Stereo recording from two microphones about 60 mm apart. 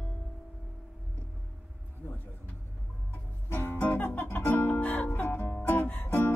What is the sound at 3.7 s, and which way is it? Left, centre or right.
Music, left.